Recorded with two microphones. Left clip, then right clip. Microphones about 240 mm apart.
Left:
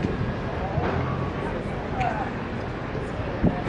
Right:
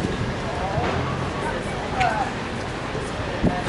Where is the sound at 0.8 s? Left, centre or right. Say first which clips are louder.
Right 1 dB; centre.